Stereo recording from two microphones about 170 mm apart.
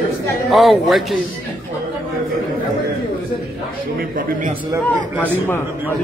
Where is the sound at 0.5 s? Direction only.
Centre (ahead or behind).